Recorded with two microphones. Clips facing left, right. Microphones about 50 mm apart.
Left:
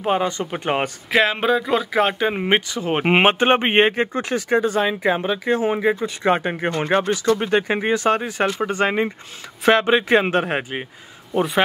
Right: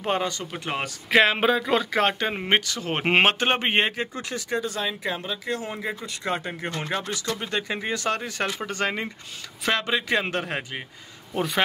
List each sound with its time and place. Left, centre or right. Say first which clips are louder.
0.0 s speech: left 5 dB; centre
0.4 s speech: left 8 dB; left
1.1 s speech: left 1 dB; centre; by 7.4 s left
7.4 s speech: left 9 dB; left
11.3 s a man's voice: left 6 dB; centre